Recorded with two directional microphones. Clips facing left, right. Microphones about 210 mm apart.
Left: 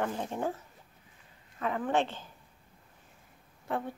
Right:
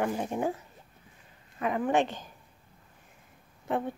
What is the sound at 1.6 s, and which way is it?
Speech, 15° right (ahead or behind).